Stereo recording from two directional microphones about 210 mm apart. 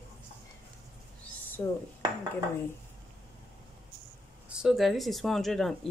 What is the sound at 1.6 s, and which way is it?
Speech, 10° left (ahead or behind).